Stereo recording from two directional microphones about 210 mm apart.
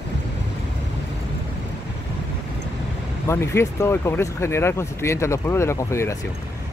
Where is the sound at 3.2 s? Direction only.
15° left (ahead or behind).